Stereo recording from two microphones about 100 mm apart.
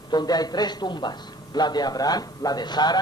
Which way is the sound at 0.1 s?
45° left (ahead or behind).